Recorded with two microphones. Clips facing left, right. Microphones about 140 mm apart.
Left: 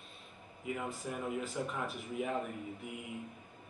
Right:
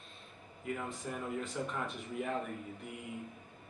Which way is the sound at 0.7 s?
5° left (ahead or behind).